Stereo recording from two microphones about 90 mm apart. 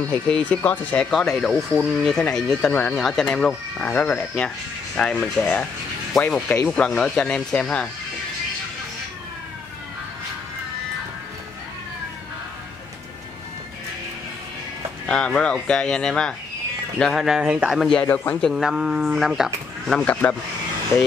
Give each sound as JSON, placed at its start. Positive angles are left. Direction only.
{"t": 0.0, "sound": "speech", "side_deg": 10}
{"t": 1.1, "sound": "speech", "side_deg": 0}
{"t": 15.0, "sound": "speech", "side_deg": 10}
{"t": 18.0, "sound": "speech", "side_deg": 20}
{"t": 18.5, "sound": "speech", "side_deg": -5}
{"t": 20.0, "sound": "speech", "side_deg": 15}